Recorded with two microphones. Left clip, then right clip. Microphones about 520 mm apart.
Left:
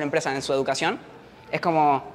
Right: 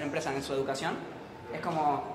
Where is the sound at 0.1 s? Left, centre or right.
Left.